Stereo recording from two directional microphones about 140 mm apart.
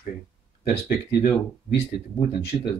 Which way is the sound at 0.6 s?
80° left.